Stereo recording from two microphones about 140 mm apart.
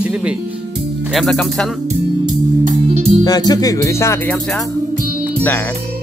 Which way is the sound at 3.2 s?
30° left (ahead or behind).